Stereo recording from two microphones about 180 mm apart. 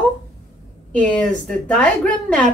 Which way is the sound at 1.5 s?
5° left (ahead or behind).